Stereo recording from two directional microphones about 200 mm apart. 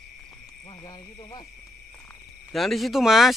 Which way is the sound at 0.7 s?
20° left (ahead or behind).